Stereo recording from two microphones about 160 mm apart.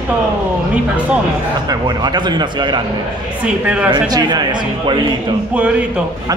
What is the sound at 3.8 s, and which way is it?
A man's voice, 25° right (ahead or behind).